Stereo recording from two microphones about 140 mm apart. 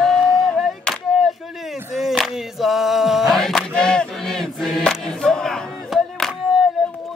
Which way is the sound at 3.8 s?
5° left (ahead or behind).